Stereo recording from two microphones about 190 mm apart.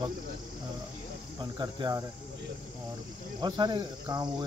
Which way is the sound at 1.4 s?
25° right (ahead or behind).